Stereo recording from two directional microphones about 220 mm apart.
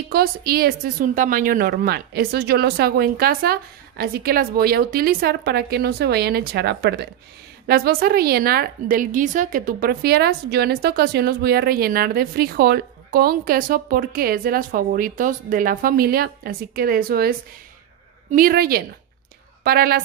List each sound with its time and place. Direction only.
0.1 s a woman's voice: 45° right (ahead or behind)